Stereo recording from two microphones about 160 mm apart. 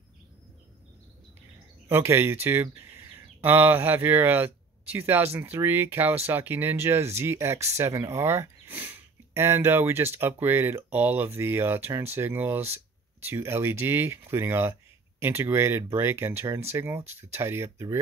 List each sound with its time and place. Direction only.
1.9 s speech: 15° right (ahead or behind)